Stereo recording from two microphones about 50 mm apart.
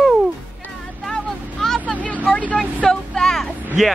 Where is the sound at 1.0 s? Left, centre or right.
Centre.